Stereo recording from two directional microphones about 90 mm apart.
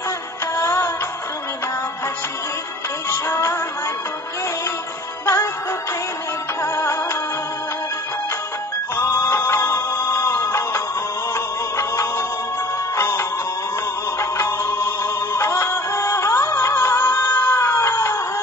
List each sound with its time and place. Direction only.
0.6 s music: 25° left (ahead or behind)
3.1 s music: 25° left (ahead or behind)
5.2 s music: 25° left (ahead or behind)
6.6 s music: 25° left (ahead or behind)
8.9 s music: 25° left (ahead or behind)
14.3 s music: 25° left (ahead or behind)